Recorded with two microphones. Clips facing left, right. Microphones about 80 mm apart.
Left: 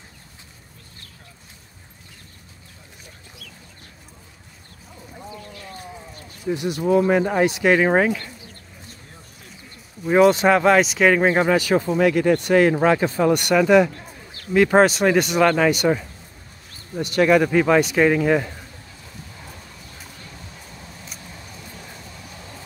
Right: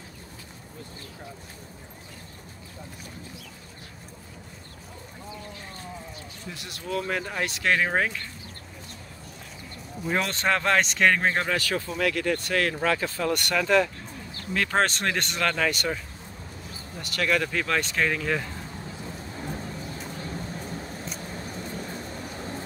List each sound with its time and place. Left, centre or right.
6.5 s speech: left
10.0 s speech: centre